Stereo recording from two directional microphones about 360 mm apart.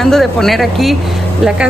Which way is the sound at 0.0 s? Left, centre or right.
Centre.